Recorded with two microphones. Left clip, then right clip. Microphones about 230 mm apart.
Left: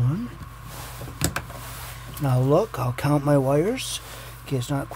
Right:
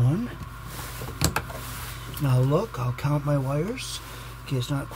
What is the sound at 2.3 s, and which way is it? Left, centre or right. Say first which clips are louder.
Speech: left 5 dB; left.